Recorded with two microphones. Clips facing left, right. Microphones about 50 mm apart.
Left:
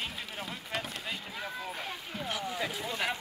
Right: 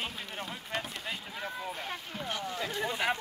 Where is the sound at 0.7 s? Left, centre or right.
Centre.